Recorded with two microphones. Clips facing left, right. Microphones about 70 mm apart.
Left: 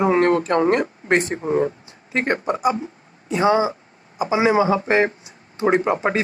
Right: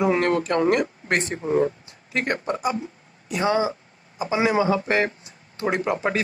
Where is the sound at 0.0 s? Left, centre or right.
Left.